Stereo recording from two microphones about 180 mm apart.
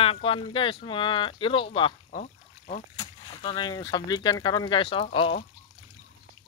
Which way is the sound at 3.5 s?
20° left (ahead or behind).